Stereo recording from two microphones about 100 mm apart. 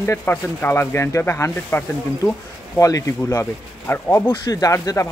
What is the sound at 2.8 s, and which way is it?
Speech, 35° left (ahead or behind).